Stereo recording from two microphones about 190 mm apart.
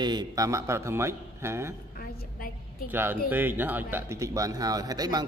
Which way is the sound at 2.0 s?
50° left (ahead or behind).